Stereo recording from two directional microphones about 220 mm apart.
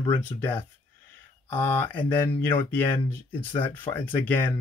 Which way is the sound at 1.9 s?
10° left (ahead or behind).